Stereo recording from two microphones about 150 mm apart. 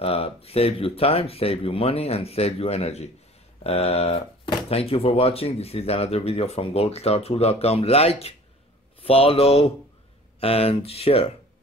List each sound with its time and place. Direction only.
0.0 s speech: 40° left (ahead or behind)